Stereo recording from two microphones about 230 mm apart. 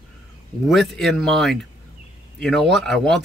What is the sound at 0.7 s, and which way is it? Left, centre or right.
Speech, centre.